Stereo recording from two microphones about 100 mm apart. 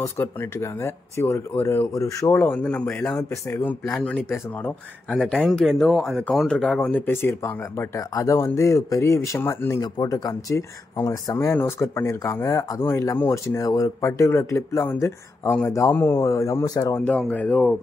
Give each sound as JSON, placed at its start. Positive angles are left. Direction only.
{"t": 0.0, "sound": "speech", "side_deg": 25}
{"t": 2.3, "sound": "speech", "side_deg": 20}
{"t": 5.2, "sound": "speech", "side_deg": 5}
{"t": 7.1, "sound": "speech", "side_deg": 25}
{"t": 9.8, "sound": "speech", "side_deg": 40}
{"t": 16.9, "sound": "speech", "side_deg": 15}